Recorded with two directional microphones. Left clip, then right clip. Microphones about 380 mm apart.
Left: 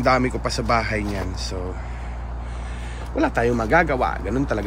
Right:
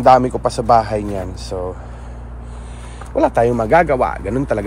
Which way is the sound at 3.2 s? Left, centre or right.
Centre.